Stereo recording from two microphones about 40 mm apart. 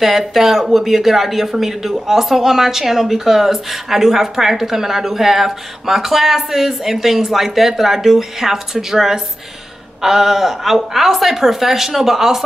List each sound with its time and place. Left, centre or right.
0.0 s speech: centre